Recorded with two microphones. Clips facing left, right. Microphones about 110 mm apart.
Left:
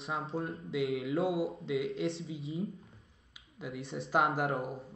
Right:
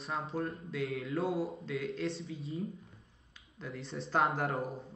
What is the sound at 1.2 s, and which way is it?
Mantra, 30° right (ahead or behind).